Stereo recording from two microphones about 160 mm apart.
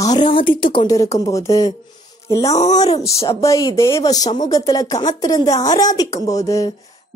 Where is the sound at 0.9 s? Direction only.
20° left (ahead or behind).